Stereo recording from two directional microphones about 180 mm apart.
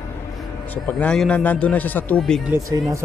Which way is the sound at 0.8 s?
5° left (ahead or behind).